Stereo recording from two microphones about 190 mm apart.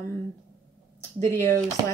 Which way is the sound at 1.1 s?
15° left (ahead or behind).